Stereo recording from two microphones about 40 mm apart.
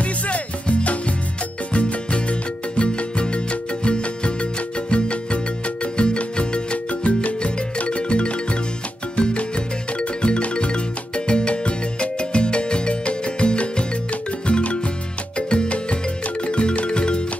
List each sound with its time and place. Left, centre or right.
0.0 s music: left